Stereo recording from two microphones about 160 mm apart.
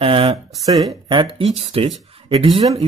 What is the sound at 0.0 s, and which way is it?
Speech, 35° right (ahead or behind).